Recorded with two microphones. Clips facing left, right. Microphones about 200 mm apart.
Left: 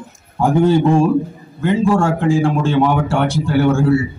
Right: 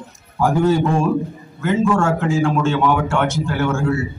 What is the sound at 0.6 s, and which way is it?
A man's voice, 30° left (ahead or behind).